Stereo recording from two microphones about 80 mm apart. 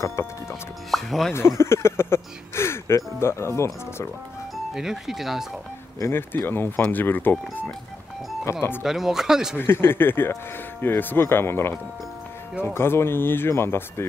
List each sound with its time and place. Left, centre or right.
0.2 s speech: left
0.9 s speech: centre
1.6 s speech: left
4.7 s speech: centre
5.9 s speech: left
8.8 s speech: centre
9.6 s speech: left